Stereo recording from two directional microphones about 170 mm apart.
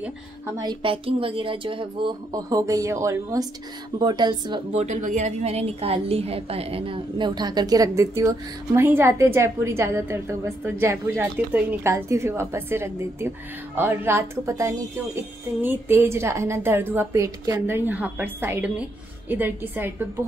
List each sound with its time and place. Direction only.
0.6 s a woman's voice: 30° right (ahead or behind)
4.7 s a woman's voice: 45° right (ahead or behind); by 19.9 s 10° right (ahead or behind)